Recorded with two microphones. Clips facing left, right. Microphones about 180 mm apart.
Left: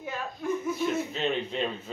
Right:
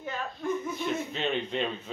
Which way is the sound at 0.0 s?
5° left (ahead or behind).